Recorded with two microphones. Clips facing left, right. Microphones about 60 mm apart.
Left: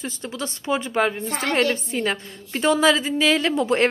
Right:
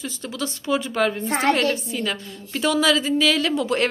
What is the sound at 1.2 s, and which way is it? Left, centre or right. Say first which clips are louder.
Speech: right 4 dB; right.